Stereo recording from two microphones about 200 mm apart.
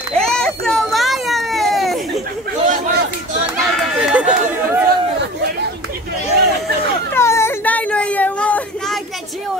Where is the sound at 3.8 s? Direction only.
5° right (ahead or behind).